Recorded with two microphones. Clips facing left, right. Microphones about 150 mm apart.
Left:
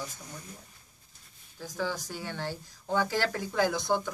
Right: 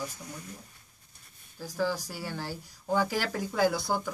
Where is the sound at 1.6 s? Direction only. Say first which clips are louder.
Right 3 dB; 10° right (ahead or behind).